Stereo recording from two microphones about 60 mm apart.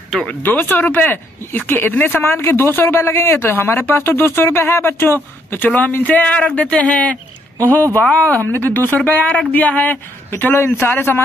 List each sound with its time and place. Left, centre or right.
0.4 s speech: left
2.3 s speech: left